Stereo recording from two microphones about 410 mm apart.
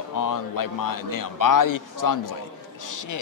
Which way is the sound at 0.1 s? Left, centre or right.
Left.